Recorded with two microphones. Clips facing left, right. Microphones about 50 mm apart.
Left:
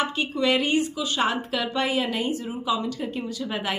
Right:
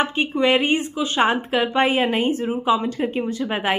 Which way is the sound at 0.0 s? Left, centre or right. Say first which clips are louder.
Right 4 dB; right.